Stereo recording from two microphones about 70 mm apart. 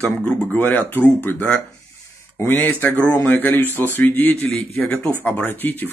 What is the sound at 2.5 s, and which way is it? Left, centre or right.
Speech, left.